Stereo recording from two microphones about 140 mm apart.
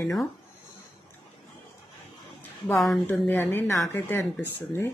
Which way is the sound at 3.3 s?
15° left (ahead or behind).